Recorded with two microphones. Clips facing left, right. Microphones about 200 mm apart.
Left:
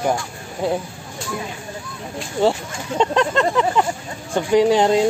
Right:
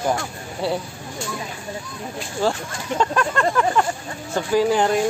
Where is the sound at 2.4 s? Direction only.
20° left (ahead or behind).